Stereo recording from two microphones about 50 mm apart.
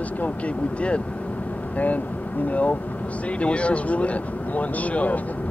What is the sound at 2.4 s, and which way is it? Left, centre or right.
Speech, left.